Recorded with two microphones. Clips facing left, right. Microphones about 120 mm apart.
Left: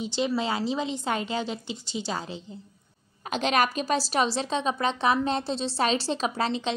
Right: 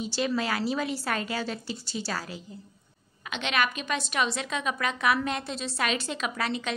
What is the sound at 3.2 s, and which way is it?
A woman's voice, 40° left (ahead or behind).